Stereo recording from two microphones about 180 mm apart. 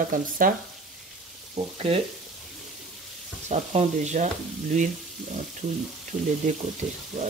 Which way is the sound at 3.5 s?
40° right (ahead or behind).